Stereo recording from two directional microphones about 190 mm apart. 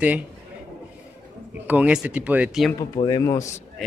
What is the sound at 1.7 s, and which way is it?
Speech, 5° right (ahead or behind).